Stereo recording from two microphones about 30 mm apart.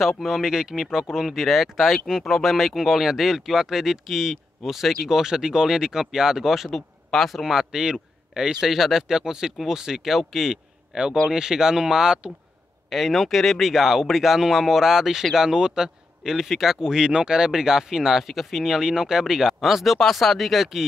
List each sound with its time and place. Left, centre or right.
0.4 s speech: centre
1.4 s speech: centre
5.2 s speech: right
7.8 s a man's voice: right
8.6 s speech: centre
9.1 s speech: centre
10.0 s speech: centre
11.2 s speech: right
12.9 s speech: centre
13.6 s speech: centre
16.8 s speech: right; by 20.8 s centre